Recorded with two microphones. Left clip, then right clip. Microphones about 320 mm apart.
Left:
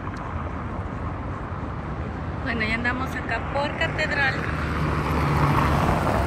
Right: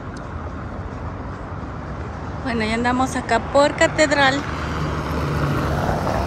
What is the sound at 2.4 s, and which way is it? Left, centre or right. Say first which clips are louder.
Speech: right 4 dB; centre.